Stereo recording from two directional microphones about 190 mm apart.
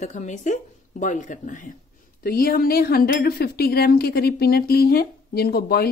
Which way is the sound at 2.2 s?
50° left (ahead or behind).